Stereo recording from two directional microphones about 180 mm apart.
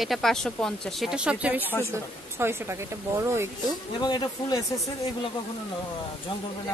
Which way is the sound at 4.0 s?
25° left (ahead or behind).